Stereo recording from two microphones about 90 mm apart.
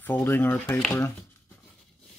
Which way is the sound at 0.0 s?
20° left (ahead or behind).